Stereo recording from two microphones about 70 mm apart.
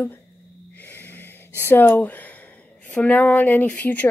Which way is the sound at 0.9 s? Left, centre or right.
Left.